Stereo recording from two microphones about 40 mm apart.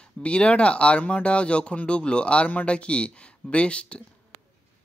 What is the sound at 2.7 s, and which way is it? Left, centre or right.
Speech, left.